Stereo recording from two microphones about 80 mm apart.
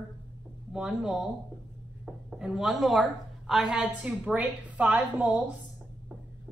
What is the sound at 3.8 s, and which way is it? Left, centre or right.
A woman's voice, centre.